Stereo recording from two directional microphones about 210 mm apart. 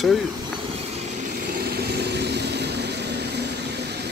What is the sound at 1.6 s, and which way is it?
Vehicle, 50° right (ahead or behind).